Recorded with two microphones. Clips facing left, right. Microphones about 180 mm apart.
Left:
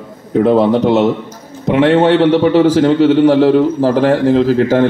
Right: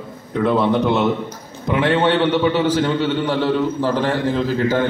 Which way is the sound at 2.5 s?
90° left.